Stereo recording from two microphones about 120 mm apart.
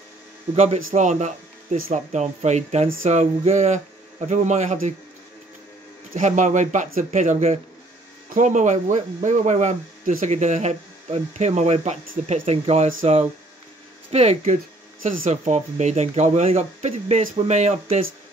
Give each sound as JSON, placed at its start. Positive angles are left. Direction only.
{"t": 0.6, "sound": "a man's voice", "side_deg": -70}
{"t": 6.1, "sound": "speech", "side_deg": -90}
{"t": 14.1, "sound": "speech", "side_deg": -70}
{"t": 15.0, "sound": "speech", "side_deg": -80}